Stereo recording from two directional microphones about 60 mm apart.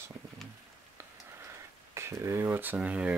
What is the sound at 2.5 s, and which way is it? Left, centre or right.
Speech, right.